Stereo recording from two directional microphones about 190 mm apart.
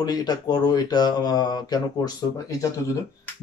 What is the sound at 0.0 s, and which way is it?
Speech, 20° left (ahead or behind).